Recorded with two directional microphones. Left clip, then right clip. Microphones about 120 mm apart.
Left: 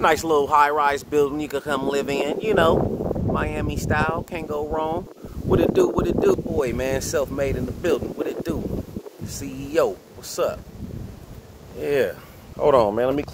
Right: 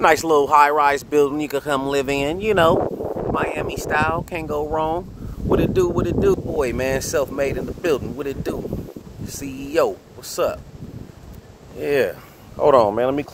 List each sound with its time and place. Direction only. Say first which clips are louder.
0.0 s speech: right 3 dB; 45° right (ahead or behind); by 5.0 s 30° right (ahead or behind)
5.5 s speech: even; centre (ahead or behind)
6.5 s speech: right 2 dB; 45° right (ahead or behind)
11.8 s speech: right 2 dB; 40° right (ahead or behind)
12.9 s speech: right 1 dB; centre (ahead or behind)